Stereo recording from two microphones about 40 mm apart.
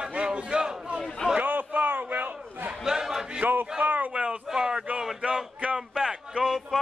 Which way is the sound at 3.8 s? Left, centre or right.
Right.